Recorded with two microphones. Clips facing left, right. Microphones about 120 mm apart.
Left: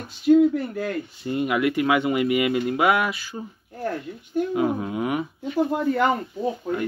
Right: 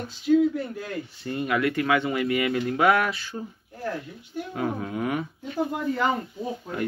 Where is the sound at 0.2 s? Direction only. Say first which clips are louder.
Left 4 dB; 55° left (ahead or behind).